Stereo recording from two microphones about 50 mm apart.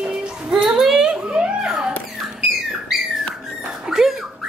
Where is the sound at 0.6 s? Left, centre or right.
Centre.